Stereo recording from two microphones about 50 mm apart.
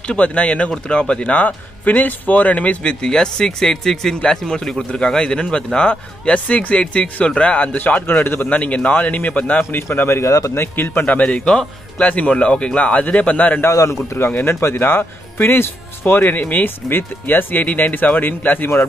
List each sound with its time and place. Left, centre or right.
0.2 s speech: left
1.4 s speech: left
8.5 s speech: left
9.7 s speech: left
10.5 s speech: left
11.1 s speech: left
12.0 s speech: left
14.4 s speech: left
16.2 s speech: left